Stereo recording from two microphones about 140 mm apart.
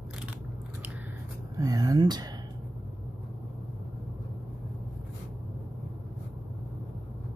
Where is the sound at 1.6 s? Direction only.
25° right (ahead or behind).